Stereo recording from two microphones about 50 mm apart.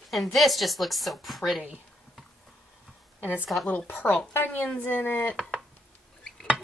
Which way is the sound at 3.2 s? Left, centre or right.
Left.